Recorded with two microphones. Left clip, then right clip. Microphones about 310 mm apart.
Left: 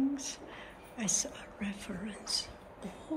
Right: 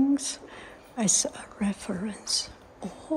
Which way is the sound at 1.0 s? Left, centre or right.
Centre.